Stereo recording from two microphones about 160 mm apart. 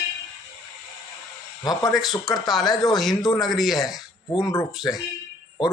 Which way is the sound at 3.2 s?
25° left (ahead or behind).